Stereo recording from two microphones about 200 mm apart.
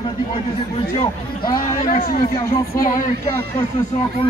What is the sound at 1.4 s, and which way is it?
A man's voice, 45° left (ahead or behind).